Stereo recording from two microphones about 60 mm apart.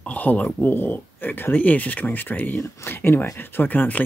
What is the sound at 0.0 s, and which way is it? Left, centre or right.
Speech, left.